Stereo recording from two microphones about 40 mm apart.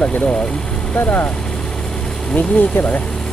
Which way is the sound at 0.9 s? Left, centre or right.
Left.